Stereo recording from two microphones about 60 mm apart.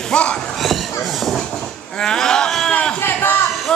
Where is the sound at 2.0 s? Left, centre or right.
Centre.